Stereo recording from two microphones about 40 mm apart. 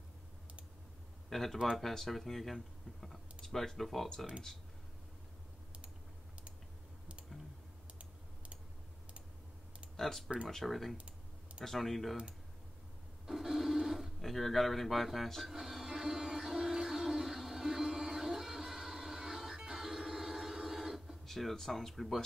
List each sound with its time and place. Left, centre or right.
1.3 s speech: centre
9.9 s speech: centre
11.0 s typing: right
11.6 s speech: centre
13.3 s printer: centre
14.2 s speech: centre
15.5 s music: centre
21.3 s speech: centre